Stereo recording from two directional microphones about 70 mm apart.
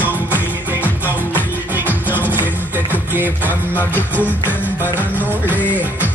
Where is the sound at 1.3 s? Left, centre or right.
Right.